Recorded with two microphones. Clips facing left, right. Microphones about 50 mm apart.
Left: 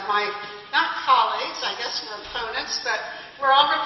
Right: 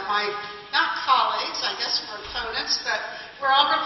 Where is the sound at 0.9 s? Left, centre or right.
Centre.